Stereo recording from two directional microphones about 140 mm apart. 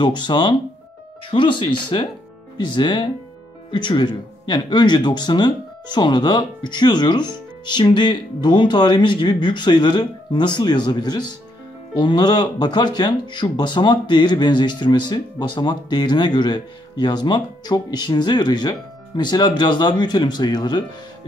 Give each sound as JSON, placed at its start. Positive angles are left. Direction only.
{"t": 0.0, "sound": "speech", "side_deg": 30}